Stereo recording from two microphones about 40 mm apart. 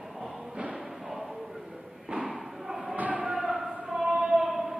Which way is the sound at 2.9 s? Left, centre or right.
Right.